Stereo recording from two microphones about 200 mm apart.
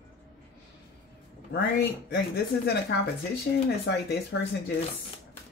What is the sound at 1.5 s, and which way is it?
Speech, 55° left (ahead or behind).